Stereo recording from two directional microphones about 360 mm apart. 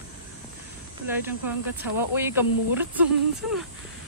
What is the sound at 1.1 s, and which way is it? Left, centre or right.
Speech, centre.